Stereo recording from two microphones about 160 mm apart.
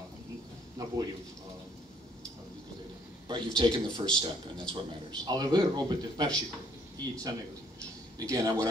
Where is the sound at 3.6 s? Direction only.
25° right (ahead or behind).